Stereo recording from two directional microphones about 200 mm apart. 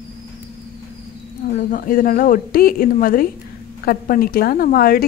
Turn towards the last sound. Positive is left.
turn(degrees=45)  # may be behind; listen again after turning